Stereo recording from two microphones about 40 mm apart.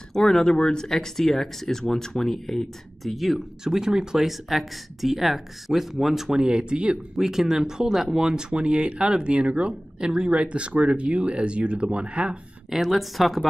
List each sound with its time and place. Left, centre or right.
0.1 s speech: centre
3.6 s speech: centre
4.2 s speech: centre
6.3 s speech: right
7.2 s speech: centre; by 12.4 s right
12.6 s speech: centre